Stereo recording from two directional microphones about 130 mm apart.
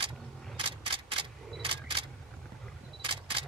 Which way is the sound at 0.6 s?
45° right (ahead or behind).